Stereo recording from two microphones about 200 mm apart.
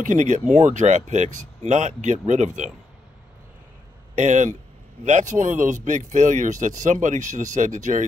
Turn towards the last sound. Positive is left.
turn(degrees=-40)  # may be behind; listen again after turning